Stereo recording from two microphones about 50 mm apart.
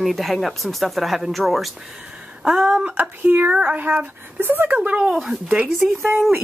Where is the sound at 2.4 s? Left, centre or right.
Centre.